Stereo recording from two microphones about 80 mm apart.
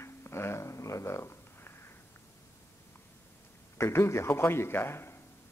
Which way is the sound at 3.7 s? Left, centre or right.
Left.